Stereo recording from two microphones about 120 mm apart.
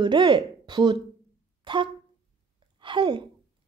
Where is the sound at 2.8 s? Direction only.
45° right (ahead or behind).